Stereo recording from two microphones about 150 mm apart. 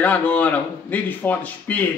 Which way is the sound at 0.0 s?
10° left (ahead or behind).